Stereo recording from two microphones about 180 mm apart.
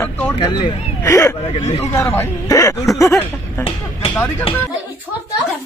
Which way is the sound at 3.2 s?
30° left (ahead or behind).